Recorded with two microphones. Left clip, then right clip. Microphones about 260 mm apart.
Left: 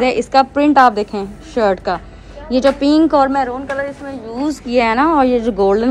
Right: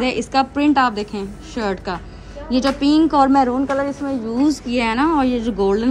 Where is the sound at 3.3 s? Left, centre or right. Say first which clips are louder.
Right 1 dB; right.